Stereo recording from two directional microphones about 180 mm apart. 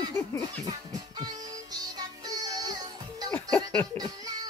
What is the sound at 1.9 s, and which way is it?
Music, 20° right (ahead or behind).